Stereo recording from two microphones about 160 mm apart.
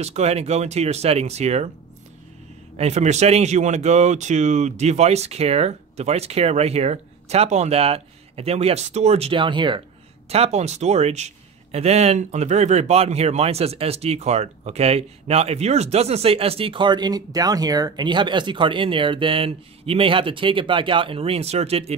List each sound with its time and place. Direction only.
0.0 s speech: 40° right (ahead or behind)
2.8 s a man's voice: 45° right (ahead or behind); by 9.8 s 30° right (ahead or behind)
10.3 s a man's voice: 40° right (ahead or behind)